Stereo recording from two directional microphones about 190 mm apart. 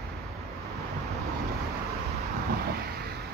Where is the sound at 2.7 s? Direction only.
55° right (ahead or behind).